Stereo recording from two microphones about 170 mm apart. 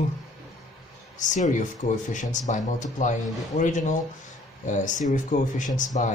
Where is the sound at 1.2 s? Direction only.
45° left (ahead or behind).